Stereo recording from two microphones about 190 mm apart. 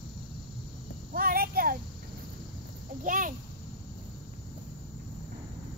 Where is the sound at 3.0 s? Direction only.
45° right (ahead or behind).